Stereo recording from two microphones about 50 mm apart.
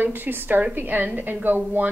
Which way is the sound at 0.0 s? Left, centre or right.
Right.